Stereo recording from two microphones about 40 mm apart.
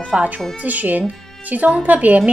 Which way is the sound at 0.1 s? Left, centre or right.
Right.